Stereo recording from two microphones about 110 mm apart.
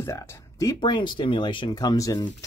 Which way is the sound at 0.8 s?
45° left (ahead or behind).